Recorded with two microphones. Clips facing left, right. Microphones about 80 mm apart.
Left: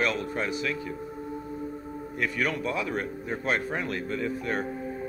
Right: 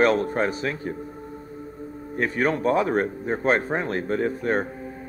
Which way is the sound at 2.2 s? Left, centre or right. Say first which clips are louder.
Right 6 dB; right.